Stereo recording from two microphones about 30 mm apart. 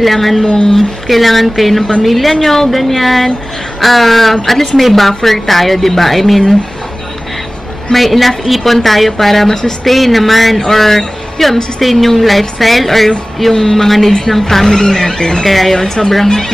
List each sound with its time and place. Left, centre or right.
0.0 s a woman's voice: centre
7.9 s a woman's voice: centre
9.8 s a woman's voice: centre; by 15.4 s left
15.4 s speech: centre